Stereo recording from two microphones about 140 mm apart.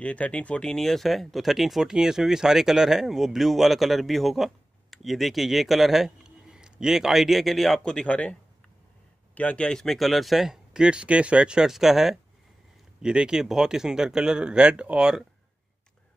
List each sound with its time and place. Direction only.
0.0 s speech: 10° left (ahead or behind)